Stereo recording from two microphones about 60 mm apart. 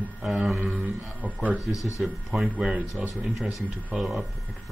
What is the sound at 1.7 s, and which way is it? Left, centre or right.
Speech, left.